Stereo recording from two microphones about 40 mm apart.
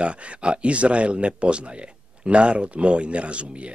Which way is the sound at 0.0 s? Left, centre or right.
Right.